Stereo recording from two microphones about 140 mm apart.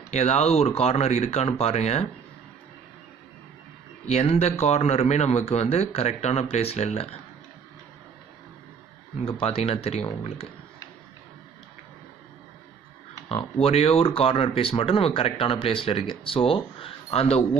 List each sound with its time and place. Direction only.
0.1 s speech: 50° left (ahead or behind)
4.1 s speech: 50° left (ahead or behind)
9.2 s speech: 40° left (ahead or behind)
13.6 s speech: 45° left (ahead or behind)